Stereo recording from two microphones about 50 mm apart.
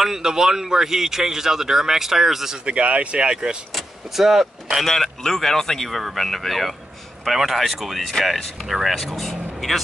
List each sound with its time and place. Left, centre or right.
0.0 s speech: centre
2.6 s speech: right
3.7 s speech: centre
4.8 s speech: centre